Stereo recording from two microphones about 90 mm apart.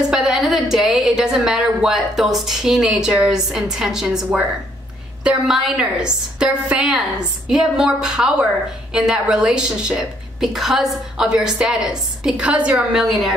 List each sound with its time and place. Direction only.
0.1 s a woman's voice: 5° right (ahead or behind)
12.7 s a woman's voice: centre (ahead or behind)